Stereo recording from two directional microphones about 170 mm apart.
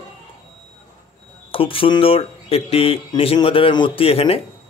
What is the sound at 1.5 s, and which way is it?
Speech, 30° left (ahead or behind).